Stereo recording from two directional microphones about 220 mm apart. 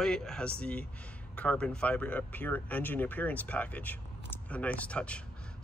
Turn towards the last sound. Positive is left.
turn(degrees=5)  # may be behind; listen again after turning